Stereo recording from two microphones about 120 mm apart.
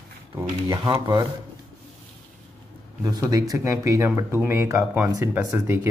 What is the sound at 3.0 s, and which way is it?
Speech, 30° right (ahead or behind).